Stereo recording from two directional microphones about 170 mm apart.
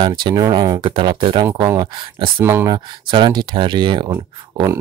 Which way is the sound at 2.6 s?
25° right (ahead or behind).